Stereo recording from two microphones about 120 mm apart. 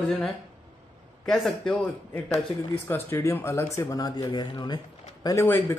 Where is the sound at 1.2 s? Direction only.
5° left (ahead or behind).